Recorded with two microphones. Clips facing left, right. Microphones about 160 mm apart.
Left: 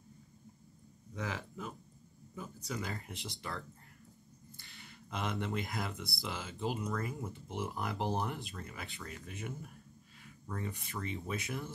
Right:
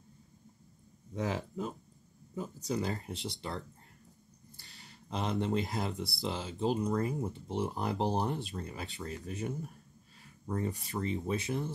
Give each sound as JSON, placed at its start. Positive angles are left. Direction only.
{"t": 1.1, "sound": "speech", "side_deg": -35}
{"t": 4.6, "sound": "a sound", "side_deg": -35}
{"t": 5.3, "sound": "speech", "side_deg": -30}